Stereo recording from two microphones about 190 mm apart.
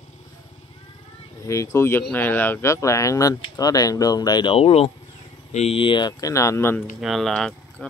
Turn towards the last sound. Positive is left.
turn(degrees=0)  # may be behind; listen again after turning